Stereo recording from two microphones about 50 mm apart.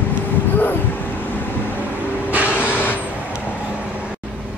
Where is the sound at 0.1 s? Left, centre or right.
Left.